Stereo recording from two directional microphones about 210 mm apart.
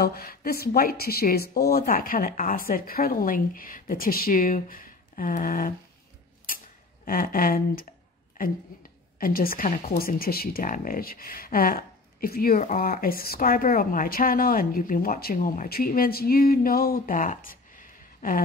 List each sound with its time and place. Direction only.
0.0 s speech: 45° left (ahead or behind)
7.1 s a woman's voice: 40° left (ahead or behind)